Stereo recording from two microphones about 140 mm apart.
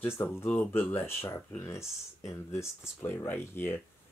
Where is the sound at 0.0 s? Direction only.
15° left (ahead or behind).